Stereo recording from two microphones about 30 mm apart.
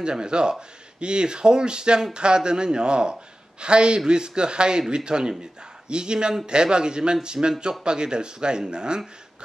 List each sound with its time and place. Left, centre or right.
0.0 s speech: right